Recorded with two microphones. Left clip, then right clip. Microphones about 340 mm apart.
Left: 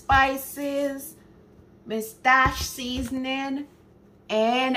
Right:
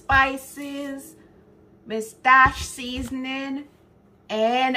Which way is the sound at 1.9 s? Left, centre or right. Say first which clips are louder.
Right 3 dB; centre.